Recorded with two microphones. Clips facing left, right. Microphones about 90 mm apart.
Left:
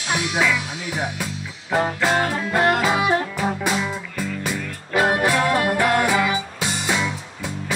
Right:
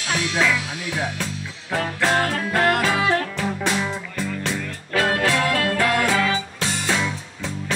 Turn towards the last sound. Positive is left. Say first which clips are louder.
# even
turn(degrees=10)  # may be behind; listen again after turning